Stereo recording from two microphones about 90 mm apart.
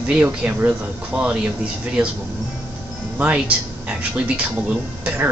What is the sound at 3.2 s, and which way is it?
Speech, 15° right (ahead or behind).